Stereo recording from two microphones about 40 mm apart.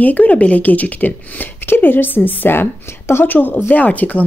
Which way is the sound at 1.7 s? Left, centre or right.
Left.